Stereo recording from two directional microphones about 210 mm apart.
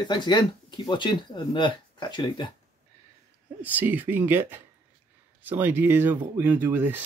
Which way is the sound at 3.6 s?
10° right (ahead or behind).